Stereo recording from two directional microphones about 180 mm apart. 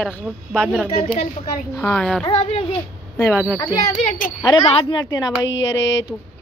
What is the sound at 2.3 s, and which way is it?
Speech, 35° left (ahead or behind).